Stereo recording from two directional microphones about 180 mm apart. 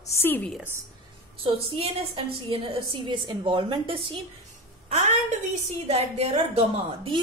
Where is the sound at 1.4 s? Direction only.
35° right (ahead or behind).